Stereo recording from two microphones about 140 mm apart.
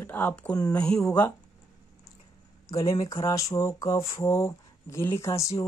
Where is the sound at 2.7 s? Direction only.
25° left (ahead or behind).